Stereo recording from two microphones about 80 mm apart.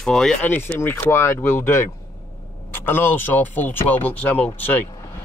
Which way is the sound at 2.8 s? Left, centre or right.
Left.